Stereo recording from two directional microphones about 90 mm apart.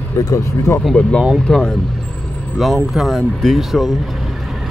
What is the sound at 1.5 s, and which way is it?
Speech, 10° left (ahead or behind).